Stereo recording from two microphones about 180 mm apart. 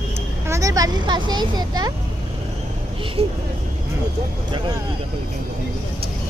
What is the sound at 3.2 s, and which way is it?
Speech, 35° right (ahead or behind).